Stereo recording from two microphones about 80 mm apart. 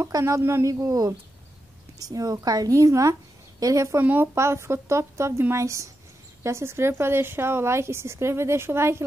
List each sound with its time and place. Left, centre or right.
0.1 s a woman's voice: right
4.0 s speech: right
4.4 s speech: right